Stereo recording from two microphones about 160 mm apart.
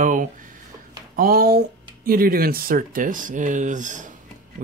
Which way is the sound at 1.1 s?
65° right (ahead or behind).